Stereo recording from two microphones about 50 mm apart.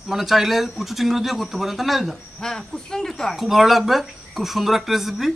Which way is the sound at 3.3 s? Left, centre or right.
Centre.